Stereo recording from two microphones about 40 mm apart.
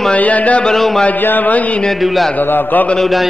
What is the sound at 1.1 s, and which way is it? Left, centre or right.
Speech, left.